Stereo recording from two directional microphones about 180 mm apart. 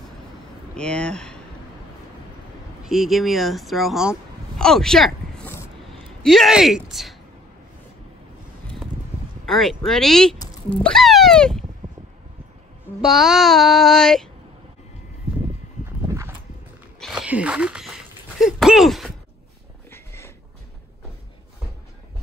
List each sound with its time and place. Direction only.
0.7 s child singing: 5° left (ahead or behind)
2.8 s speech: centre (ahead or behind)
6.2 s child singing: centre (ahead or behind)
9.5 s child singing: centre (ahead or behind)
10.7 s speech: 5° left (ahead or behind)
11.8 s a sound: 20° right (ahead or behind)
12.8 s child singing: centre (ahead or behind)
17.0 s a sound: 5° right (ahead or behind)
19.9 s a sound: 15° left (ahead or behind)